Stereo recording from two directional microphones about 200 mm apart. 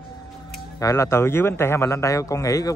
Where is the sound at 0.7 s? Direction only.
15° left (ahead or behind).